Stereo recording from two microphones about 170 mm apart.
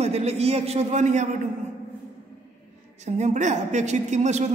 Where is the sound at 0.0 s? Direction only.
40° right (ahead or behind).